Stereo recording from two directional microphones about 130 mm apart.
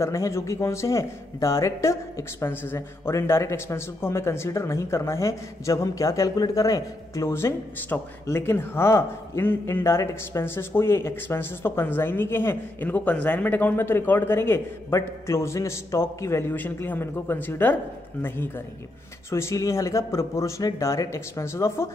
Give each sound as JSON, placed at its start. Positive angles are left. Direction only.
{"t": 0.0, "sound": "a man's voice", "side_deg": 20}